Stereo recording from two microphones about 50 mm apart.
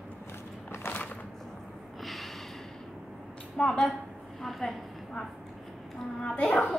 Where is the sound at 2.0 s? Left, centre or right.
Centre.